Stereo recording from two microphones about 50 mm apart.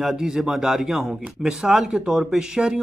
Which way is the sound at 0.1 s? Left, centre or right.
Centre.